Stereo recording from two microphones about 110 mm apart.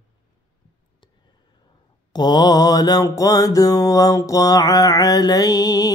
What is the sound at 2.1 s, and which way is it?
Mantra, 35° left (ahead or behind).